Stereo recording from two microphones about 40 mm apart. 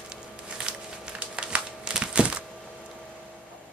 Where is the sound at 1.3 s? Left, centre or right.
Right.